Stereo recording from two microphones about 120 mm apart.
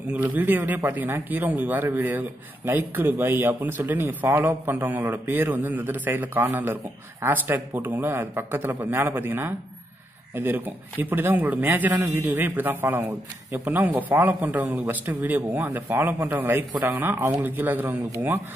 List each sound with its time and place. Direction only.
0.4 s speech: 15° right (ahead or behind)